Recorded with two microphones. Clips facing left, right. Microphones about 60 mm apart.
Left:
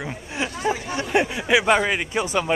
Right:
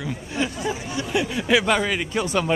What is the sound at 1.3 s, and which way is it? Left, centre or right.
Speech, centre.